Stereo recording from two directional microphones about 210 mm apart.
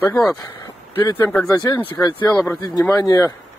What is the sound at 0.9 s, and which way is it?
Speech, 20° left (ahead or behind).